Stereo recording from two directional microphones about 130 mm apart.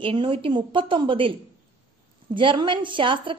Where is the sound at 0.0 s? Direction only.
40° right (ahead or behind).